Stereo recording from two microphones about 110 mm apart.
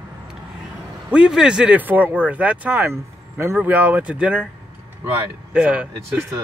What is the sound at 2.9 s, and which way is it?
Speech, 25° right (ahead or behind).